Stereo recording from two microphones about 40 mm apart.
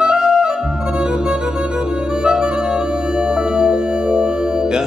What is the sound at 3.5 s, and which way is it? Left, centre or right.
Music, centre.